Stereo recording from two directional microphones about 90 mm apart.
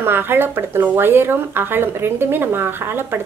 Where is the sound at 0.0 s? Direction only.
25° right (ahead or behind).